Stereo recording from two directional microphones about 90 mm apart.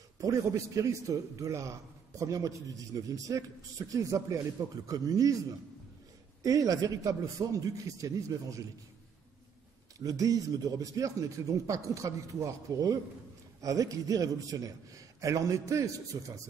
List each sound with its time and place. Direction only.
0.2 s a man's voice: 40° right (ahead or behind)
6.4 s a man's voice: 40° right (ahead or behind)
9.9 s a man's voice: 40° right (ahead or behind)